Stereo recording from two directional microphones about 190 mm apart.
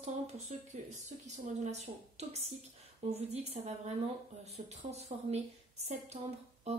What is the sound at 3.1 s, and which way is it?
A woman's voice, 35° right (ahead or behind).